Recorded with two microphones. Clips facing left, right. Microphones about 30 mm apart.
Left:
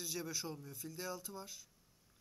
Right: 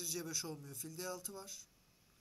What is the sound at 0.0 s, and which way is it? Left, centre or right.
Speech, centre.